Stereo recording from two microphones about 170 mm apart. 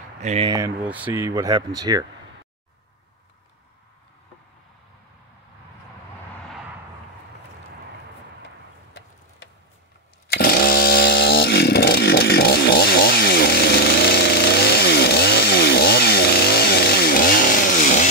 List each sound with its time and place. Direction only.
0.2 s speech: 40° right (ahead or behind)
0.5 s speech: 20° right (ahead or behind)
0.8 s speech: 10° right (ahead or behind)
10.3 s chainsaw: 65° left (ahead or behind)